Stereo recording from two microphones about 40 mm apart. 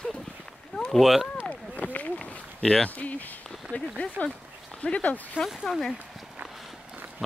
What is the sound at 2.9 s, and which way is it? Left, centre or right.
Speech, left.